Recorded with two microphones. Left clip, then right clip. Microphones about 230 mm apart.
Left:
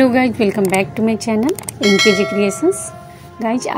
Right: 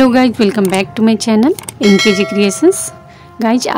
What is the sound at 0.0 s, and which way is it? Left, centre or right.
Speech, right.